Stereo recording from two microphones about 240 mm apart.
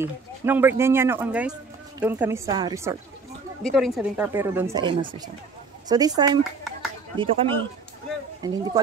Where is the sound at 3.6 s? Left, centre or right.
Centre; by 7.6 s right.